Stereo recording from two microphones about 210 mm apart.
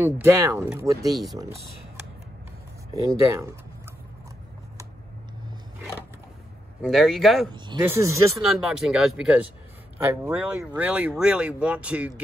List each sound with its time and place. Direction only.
0.0 s speech: 10° right (ahead or behind)
1.1 s speech: centre (ahead or behind)
2.9 s speech: 15° right (ahead or behind)
6.8 s speech: centre (ahead or behind)
7.5 s speech: 20° right (ahead or behind)
8.5 s speech: centre (ahead or behind)